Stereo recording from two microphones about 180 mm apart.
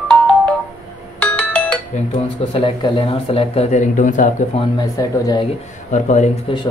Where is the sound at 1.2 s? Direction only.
10° left (ahead or behind).